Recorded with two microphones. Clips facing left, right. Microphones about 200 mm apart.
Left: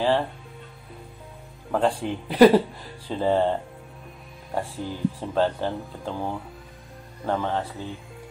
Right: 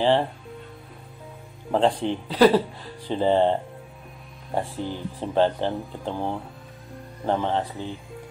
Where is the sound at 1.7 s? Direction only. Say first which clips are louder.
Right 2 dB; 20° right (ahead or behind).